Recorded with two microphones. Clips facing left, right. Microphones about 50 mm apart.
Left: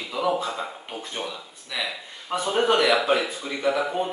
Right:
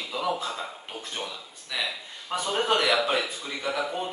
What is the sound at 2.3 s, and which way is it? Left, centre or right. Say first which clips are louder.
A man's voice: left 4 dB; centre.